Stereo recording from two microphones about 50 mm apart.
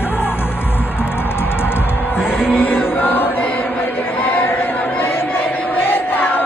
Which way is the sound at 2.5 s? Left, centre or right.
Left.